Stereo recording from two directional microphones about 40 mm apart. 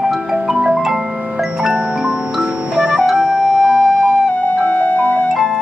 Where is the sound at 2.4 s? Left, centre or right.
Centre.